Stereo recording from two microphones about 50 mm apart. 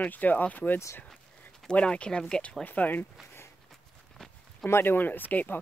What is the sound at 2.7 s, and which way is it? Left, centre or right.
Speech, left.